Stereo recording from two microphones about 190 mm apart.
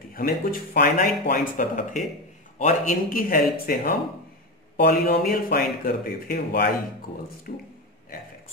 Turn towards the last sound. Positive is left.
turn(degrees=50)  # may be behind; listen again after turning